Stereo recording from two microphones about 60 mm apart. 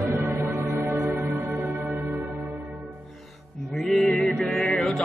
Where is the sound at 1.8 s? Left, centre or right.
Right.